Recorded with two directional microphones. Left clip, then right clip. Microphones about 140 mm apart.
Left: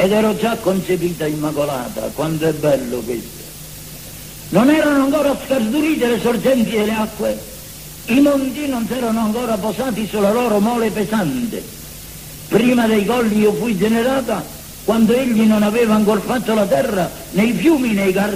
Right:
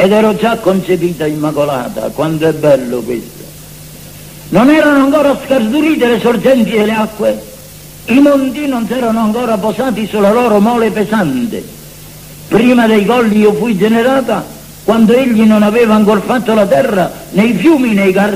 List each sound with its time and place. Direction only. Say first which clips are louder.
0.0 s a man's voice: right 6 dB; 30° right (ahead or behind)
4.5 s a man's voice: right 6 dB; 30° right (ahead or behind)
12.4 s a man's voice: right 6 dB; 30° right (ahead or behind)